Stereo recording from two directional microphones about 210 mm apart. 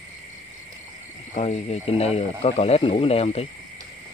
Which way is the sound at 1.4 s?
30° left (ahead or behind).